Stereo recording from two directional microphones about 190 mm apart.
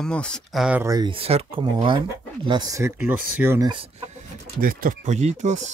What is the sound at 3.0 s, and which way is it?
Speech, 10° right (ahead or behind).